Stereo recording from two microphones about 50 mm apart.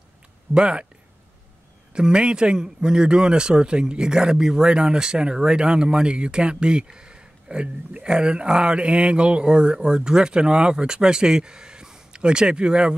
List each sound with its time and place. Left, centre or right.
0.6 s speech: right
2.0 s speech: centre